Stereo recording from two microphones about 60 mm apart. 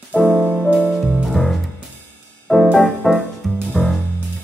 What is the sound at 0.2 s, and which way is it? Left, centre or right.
Music, centre.